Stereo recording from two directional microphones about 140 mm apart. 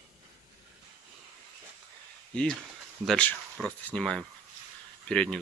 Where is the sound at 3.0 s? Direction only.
5° left (ahead or behind).